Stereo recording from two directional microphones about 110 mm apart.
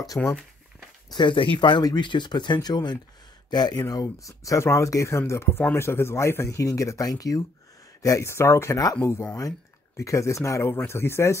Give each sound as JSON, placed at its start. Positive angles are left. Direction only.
{"t": 0.2, "sound": "speech", "side_deg": 10}
{"t": 1.1, "sound": "speech", "side_deg": 45}